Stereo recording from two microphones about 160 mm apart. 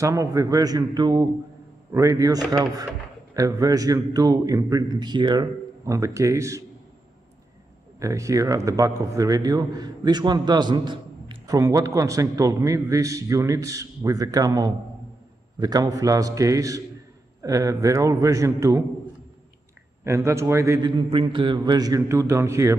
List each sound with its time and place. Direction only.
0.0 s a man's voice: 20° right (ahead or behind)
8.0 s a man's voice: 20° right (ahead or behind)
20.0 s a man's voice: 15° right (ahead or behind)
20.9 s a man's voice: 30° right (ahead or behind)